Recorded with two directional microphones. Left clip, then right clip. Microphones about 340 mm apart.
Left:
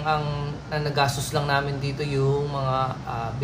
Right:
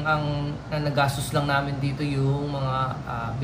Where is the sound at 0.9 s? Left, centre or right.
Centre.